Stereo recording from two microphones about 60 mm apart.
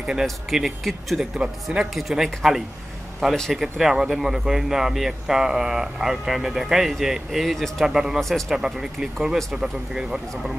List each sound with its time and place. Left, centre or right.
0.0 s speech: centre
1.4 s speech: centre
2.0 s speech: centre
8.2 s speech: centre
8.5 s speech: centre